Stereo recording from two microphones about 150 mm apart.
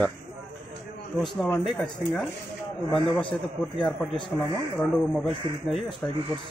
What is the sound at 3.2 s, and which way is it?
A man's voice, 35° left (ahead or behind).